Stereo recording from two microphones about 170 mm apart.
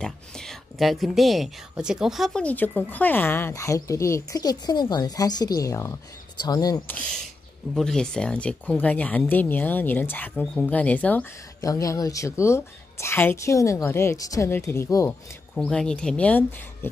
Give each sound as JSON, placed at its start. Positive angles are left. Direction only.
{"t": 0.0, "sound": "speech", "side_deg": 5}
{"t": 7.7, "sound": "speech", "side_deg": 5}
{"t": 11.6, "sound": "speech", "side_deg": 20}
{"t": 15.5, "sound": "speech", "side_deg": 5}